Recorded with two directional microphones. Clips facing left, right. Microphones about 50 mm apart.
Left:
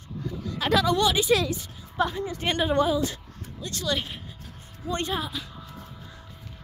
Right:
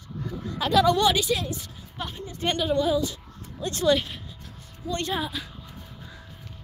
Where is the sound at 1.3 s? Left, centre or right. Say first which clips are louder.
Left 4 dB; left.